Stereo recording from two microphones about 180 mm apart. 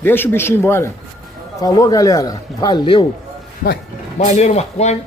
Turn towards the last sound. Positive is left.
turn(degrees=35)  # may be behind; listen again after turning